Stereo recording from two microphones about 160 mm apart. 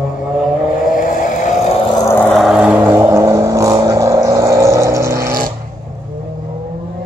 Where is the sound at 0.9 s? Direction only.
55° left (ahead or behind).